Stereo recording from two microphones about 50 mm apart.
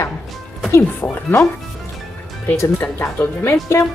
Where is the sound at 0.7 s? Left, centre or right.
Left.